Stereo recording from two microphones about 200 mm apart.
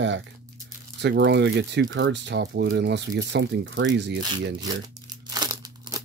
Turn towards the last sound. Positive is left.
turn(degrees=-20)  # may be behind; listen again after turning